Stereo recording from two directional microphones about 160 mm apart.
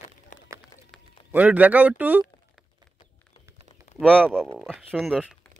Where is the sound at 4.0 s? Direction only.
5° left (ahead or behind).